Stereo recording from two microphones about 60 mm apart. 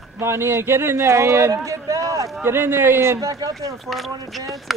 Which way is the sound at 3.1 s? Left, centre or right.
Right.